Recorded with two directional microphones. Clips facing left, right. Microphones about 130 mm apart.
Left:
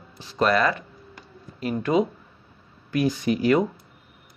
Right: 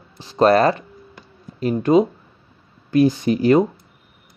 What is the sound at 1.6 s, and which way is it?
Speech, 25° right (ahead or behind).